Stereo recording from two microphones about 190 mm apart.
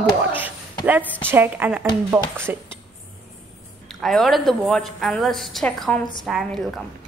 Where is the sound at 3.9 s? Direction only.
Centre (ahead or behind).